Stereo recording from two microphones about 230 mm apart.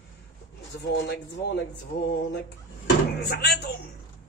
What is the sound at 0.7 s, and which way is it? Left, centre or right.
Speech, left.